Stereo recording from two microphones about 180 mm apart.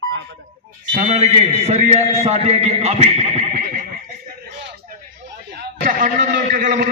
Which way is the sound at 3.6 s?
55° right (ahead or behind).